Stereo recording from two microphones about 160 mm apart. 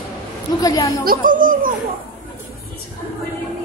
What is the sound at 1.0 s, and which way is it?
Speech, 60° right (ahead or behind).